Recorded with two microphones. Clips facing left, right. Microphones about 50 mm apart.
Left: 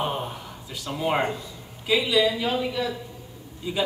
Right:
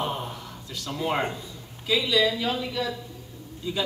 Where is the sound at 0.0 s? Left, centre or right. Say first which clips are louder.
Left 2 dB; centre.